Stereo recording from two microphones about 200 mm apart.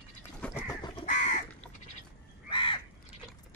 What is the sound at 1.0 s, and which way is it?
Crow, 40° left (ahead or behind).